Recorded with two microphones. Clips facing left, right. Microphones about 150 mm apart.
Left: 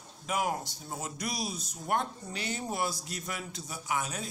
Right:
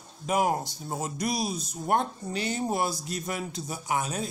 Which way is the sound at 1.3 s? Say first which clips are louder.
Right 6 dB; 25° right (ahead or behind).